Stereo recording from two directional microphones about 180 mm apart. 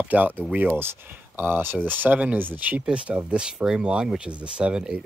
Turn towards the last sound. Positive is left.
turn(degrees=-5)  # may be behind; listen again after turning